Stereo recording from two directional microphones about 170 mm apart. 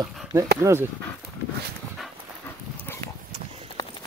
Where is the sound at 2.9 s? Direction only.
15° left (ahead or behind).